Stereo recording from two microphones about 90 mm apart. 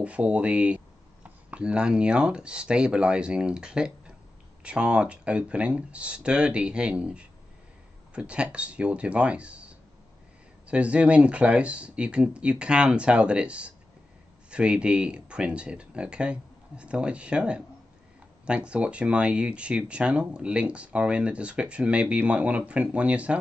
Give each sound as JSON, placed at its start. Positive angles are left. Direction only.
{"t": 0.0, "sound": "speech", "side_deg": -15}